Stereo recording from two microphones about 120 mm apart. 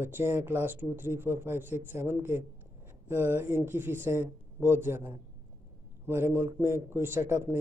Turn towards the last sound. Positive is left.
turn(degrees=-20)  # may be behind; listen again after turning